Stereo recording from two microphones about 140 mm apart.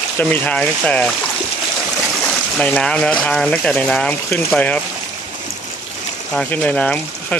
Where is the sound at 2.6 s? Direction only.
5° left (ahead or behind).